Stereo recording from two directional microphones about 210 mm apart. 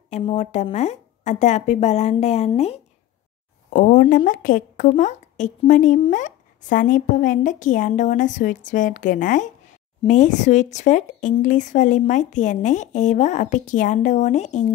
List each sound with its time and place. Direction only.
0.1 s a woman's voice: 30° left (ahead or behind)